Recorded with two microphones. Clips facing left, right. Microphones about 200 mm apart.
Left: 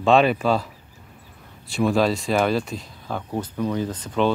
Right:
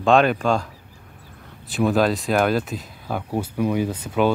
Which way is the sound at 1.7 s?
Centre (ahead or behind).